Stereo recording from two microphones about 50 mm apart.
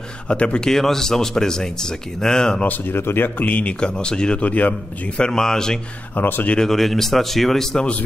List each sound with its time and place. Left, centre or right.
0.3 s speech: left
0.7 s speech: centre
2.9 s speech: left
5.1 s speech: centre
6.1 s speech: left
6.6 s speech: centre